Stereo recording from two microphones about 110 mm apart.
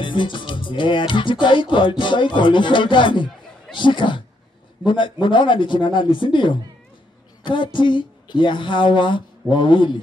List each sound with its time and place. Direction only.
0.0 s speech: 45° left (ahead or behind)